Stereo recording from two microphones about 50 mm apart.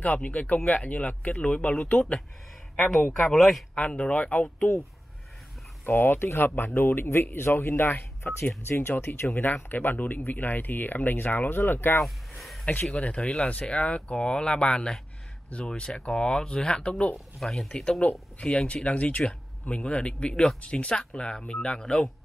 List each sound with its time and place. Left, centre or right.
0.0 s speech: left
3.2 s speech: centre
3.7 s speech: left
5.9 s speech: left
9.3 s speech: left
12.4 s a sound: centre
12.9 s speech: left
13.2 s speech: centre
13.5 s speech: left
17.4 s speech: centre